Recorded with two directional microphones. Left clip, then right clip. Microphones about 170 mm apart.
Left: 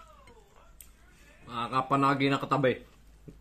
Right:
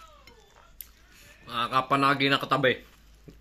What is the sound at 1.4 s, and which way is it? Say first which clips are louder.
Speech: right 4 dB; centre (ahead or behind).